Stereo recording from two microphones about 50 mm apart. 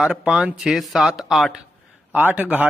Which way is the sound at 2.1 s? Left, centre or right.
Right.